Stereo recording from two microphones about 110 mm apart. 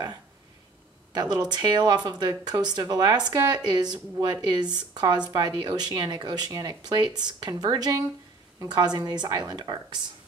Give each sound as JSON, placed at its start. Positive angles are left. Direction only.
{"t": 1.3, "sound": "speech", "side_deg": -40}